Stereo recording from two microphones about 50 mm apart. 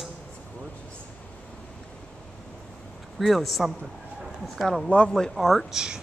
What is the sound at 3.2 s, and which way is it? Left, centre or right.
Speech, centre.